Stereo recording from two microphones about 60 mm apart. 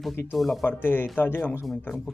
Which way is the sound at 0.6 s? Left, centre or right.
Left.